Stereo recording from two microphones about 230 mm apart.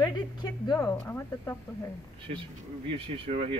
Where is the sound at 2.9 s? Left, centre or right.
Right.